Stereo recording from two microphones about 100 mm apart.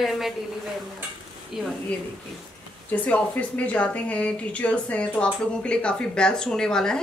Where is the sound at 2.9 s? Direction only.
15° left (ahead or behind).